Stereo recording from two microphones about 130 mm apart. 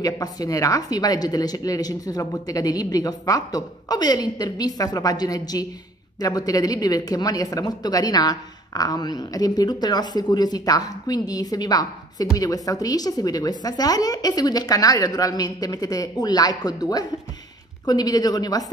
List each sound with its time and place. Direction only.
0.0 s speech: 30° left (ahead or behind)